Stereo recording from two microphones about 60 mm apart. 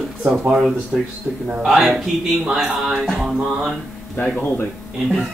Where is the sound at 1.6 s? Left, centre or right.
Centre.